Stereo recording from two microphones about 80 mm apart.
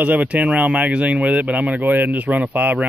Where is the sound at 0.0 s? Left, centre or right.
Centre.